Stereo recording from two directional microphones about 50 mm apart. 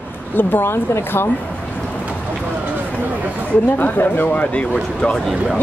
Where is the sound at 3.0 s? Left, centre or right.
Right.